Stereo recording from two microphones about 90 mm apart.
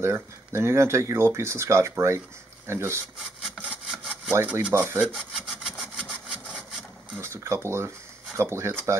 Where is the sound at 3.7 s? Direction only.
10° right (ahead or behind).